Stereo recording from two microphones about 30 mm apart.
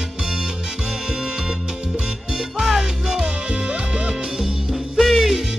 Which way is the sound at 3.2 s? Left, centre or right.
Right.